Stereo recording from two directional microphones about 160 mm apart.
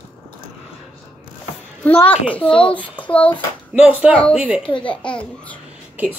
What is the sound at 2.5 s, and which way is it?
Speech, 35° left (ahead or behind).